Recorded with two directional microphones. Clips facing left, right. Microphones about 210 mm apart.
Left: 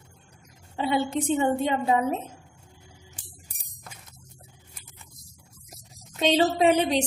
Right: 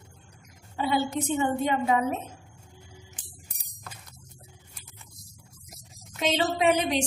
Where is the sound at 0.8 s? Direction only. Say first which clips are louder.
Left 1 dB; 25° left (ahead or behind).